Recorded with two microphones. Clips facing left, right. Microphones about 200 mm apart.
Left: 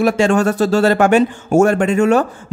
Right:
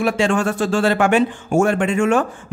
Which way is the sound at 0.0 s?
40° left (ahead or behind).